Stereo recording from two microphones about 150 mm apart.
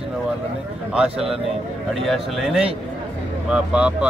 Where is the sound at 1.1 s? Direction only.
40° right (ahead or behind).